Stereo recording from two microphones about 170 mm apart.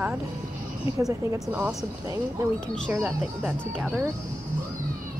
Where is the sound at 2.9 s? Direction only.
5° right (ahead or behind).